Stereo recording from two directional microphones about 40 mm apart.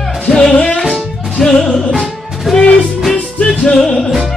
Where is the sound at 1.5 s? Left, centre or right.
Left.